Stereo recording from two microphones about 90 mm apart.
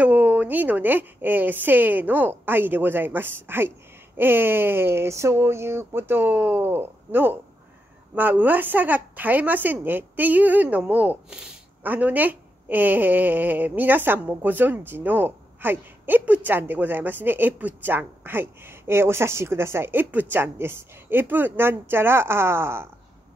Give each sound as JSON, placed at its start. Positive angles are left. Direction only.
{"t": 0.0, "sound": "a woman's voice", "side_deg": -20}